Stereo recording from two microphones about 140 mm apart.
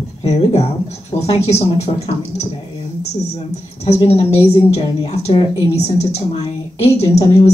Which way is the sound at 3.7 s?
45° left (ahead or behind).